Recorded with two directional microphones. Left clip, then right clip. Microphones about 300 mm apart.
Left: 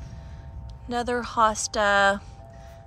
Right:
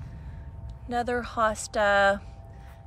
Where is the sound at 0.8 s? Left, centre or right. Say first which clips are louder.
Left 1 dB; centre.